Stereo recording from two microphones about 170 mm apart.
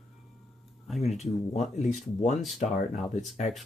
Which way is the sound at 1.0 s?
40° left (ahead or behind).